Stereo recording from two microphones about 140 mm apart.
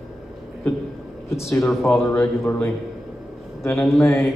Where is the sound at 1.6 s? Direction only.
Centre (ahead or behind).